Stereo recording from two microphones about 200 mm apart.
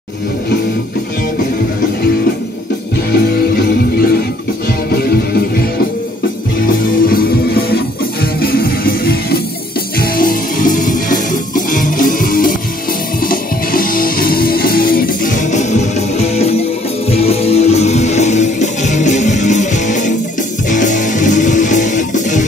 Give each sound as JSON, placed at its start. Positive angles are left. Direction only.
{"t": 3.1, "sound": "music", "side_deg": 50}
{"t": 7.1, "sound": "music", "side_deg": 50}